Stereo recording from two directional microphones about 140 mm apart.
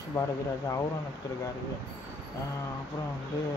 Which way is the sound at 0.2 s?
25° left (ahead or behind).